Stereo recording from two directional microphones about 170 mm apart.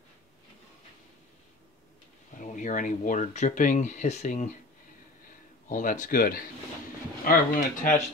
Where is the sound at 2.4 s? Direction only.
45° left (ahead or behind).